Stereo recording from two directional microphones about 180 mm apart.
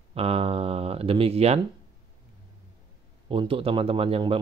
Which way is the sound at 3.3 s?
30° right (ahead or behind).